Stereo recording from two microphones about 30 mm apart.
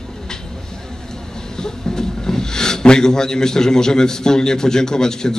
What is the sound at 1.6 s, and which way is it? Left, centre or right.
Speech, left.